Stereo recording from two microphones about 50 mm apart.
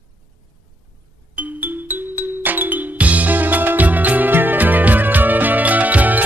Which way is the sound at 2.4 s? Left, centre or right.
Right.